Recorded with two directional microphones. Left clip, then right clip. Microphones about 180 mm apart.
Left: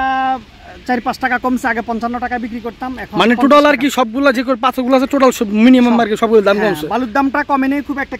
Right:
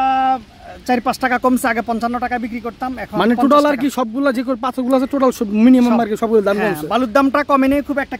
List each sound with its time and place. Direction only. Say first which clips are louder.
0.0 s a sound: right 1 dB; 25° right (ahead or behind)
0.8 s speech: even; 35° right (ahead or behind)
3.2 s speech: left 3 dB; 5° right (ahead or behind)
6.6 s speech: left 1 dB; 35° right (ahead or behind)